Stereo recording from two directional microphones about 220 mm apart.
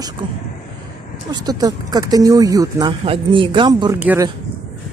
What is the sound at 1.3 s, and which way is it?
Speech, 20° right (ahead or behind).